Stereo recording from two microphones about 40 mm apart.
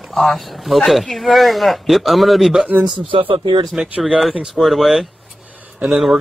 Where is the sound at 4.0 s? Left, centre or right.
Centre.